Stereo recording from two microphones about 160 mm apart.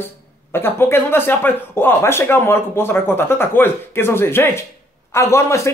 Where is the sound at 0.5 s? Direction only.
15° left (ahead or behind).